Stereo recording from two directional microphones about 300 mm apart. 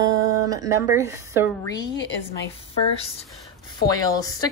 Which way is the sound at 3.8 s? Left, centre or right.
Centre.